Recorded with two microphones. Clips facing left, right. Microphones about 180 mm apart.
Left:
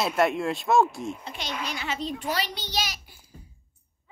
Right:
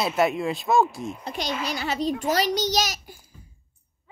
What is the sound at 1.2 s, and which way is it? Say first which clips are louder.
A child's voice: right 5 dB; 40° right (ahead or behind).